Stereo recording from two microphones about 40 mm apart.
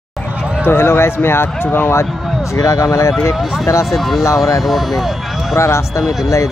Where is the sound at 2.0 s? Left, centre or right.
Centre.